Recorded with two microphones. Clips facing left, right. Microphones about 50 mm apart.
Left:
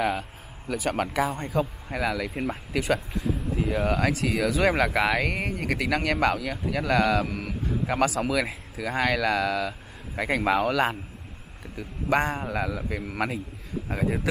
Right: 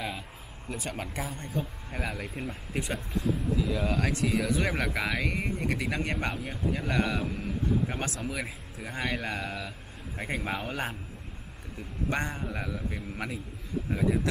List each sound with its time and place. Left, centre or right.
0.7 s speech: left
3.5 s speech: left
4.0 s speech: left
13.8 s speech: left